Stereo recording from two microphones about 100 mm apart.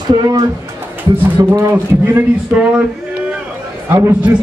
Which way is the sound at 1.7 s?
20° right (ahead or behind).